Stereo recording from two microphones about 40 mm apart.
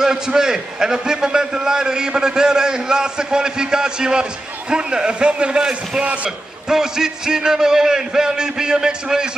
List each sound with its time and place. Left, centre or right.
0.0 s a man's voice: centre
6.7 s a man's voice: centre